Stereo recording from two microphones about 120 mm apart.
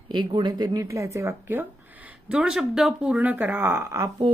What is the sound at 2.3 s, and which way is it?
Speech, 5° right (ahead or behind).